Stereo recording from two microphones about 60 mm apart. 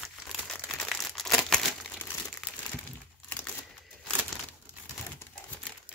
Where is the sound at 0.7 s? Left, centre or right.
Centre.